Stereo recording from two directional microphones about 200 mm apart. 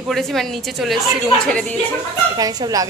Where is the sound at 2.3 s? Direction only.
20° right (ahead or behind).